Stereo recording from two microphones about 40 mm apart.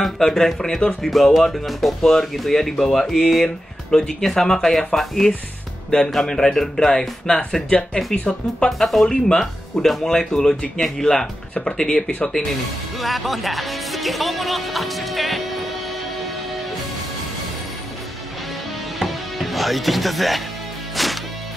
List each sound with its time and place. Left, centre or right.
0.0 s speech: centre
8.8 s speech: centre
9.1 s speech: centre
13.0 s speech: centre
18.9 s music: centre